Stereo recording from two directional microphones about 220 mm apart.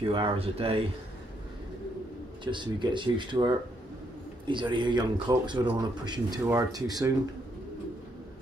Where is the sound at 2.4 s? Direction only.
20° right (ahead or behind).